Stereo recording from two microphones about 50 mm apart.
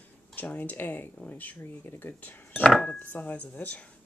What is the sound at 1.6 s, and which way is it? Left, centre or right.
Speech, left.